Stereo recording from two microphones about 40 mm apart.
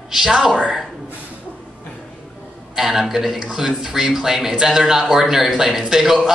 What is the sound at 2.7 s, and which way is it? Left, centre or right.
A man's voice, centre.